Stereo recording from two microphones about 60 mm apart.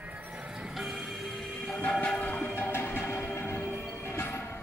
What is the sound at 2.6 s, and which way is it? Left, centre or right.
Music, left.